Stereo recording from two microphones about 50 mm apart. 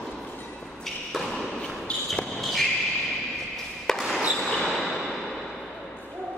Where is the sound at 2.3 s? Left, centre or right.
Centre.